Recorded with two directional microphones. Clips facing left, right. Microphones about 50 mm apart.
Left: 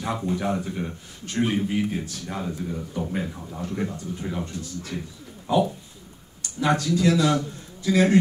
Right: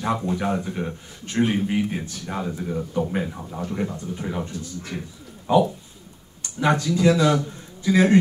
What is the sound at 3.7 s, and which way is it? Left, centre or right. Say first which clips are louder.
Speech: right 1 dB; right.